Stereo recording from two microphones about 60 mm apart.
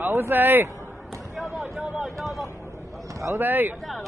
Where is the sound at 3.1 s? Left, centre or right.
Right.